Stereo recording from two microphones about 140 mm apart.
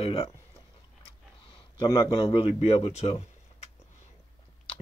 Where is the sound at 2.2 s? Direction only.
45° left (ahead or behind).